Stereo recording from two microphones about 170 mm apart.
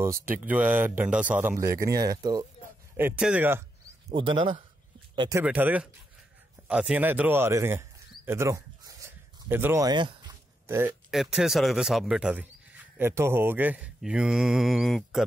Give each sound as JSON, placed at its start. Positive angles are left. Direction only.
{"t": 0.0, "sound": "speech", "side_deg": -15}
{"t": 3.0, "sound": "speech", "side_deg": -10}
{"t": 4.1, "sound": "speech", "side_deg": -30}
{"t": 5.4, "sound": "speech", "side_deg": -10}
{"t": 8.3, "sound": "a sound", "side_deg": -15}
{"t": 10.7, "sound": "speech", "side_deg": -15}
{"t": 11.1, "sound": "speech", "side_deg": 0}